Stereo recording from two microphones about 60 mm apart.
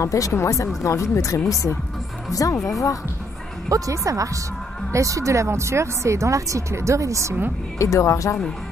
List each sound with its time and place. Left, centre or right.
0.0 s speech: left
3.6 s speech: right
7.8 s speech: left